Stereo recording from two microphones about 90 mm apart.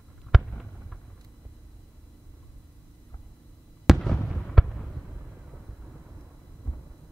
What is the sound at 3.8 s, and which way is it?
Fireworks, centre (ahead or behind).